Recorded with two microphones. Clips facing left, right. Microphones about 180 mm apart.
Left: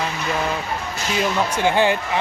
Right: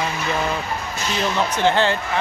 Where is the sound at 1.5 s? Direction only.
10° left (ahead or behind).